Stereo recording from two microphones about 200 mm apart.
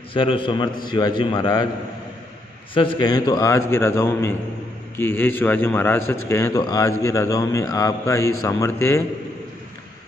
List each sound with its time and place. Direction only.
0.1 s a man's voice: 25° left (ahead or behind)
2.7 s a man's voice: 25° left (ahead or behind)